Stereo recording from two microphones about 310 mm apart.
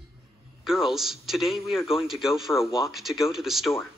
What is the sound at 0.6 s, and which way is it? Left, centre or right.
A man's voice, centre.